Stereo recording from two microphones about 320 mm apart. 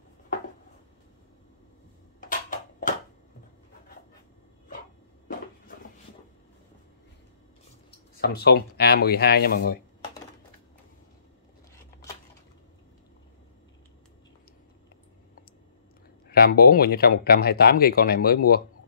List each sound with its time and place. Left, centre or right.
2.1 s a sound: left
8.2 s speech: left
16.3 s speech: left